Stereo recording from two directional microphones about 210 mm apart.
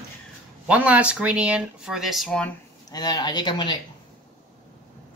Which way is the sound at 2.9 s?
20° left (ahead or behind).